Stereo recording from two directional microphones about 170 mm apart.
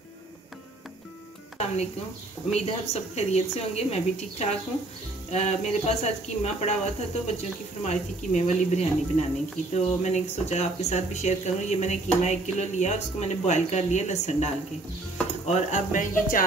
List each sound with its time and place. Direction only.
2.5 s speech: 40° left (ahead or behind)